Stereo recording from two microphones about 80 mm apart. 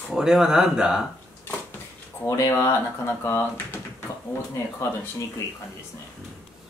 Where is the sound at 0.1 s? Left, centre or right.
Centre.